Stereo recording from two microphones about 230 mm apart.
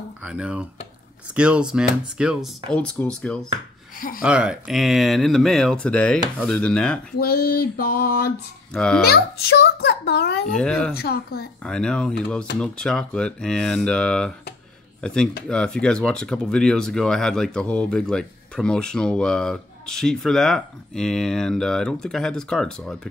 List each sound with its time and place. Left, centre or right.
0.2 s speech: centre
7.2 s mantra: left
8.7 s speech: centre
9.0 s a child's voice: left
10.5 s speech: centre
11.0 s mantra: left
11.6 s speech: centre